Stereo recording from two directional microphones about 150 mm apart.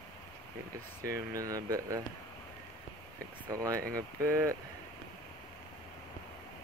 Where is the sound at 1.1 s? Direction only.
20° right (ahead or behind).